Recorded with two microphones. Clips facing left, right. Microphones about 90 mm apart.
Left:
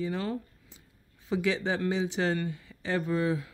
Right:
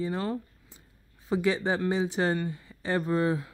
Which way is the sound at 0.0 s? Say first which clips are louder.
Right 1 dB; 35° right (ahead or behind).